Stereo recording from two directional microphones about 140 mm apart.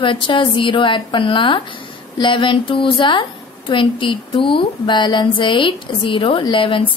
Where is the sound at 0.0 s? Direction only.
35° left (ahead or behind).